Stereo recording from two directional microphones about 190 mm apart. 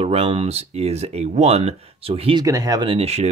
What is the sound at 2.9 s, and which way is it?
Speech, 35° right (ahead or behind).